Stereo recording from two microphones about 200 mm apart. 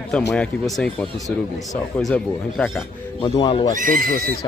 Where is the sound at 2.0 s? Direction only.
Centre (ahead or behind).